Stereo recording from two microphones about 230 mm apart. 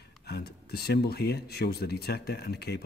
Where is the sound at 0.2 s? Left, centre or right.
Left.